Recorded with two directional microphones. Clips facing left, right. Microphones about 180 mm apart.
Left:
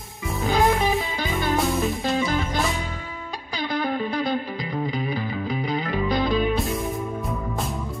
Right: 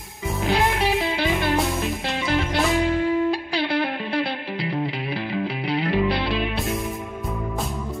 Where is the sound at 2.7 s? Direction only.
85° right.